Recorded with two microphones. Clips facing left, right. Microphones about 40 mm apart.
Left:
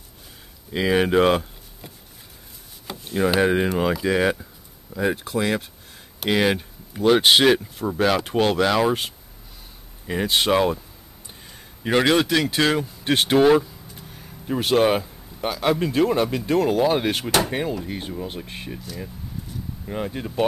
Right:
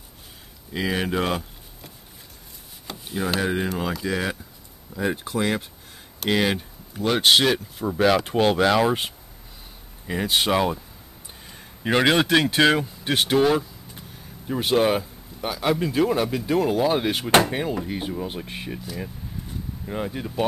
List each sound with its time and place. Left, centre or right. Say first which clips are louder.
0.7 s speech: left 6 dB; centre
2.9 s a sound: left 5 dB; centre
3.3 s speech: left 5 dB; centre
4.9 s speech: left 3 dB; centre
5.3 s speech: left 1 dB; centre
10.0 s speech: left 2 dB; centre
11.4 s a sound: right 1 dB; centre
12.5 s speech: right 2 dB; centre
13.0 s speech: left 4 dB; centre
14.6 s speech: left 2 dB; centre
14.9 s speech: left 1 dB; centre
19.9 s speech: left 1 dB; centre